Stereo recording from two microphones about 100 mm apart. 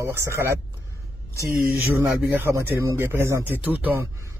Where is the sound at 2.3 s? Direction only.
25° right (ahead or behind).